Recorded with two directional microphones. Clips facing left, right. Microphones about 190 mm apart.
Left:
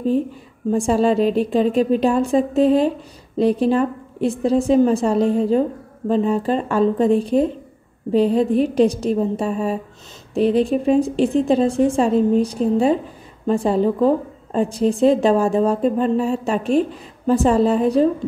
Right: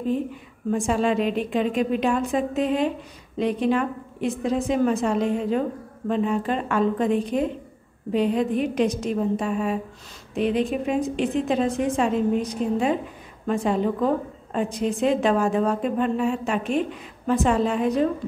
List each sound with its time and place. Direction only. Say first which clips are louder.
0.7 s a woman's voice: left 5 dB; 30° left (ahead or behind)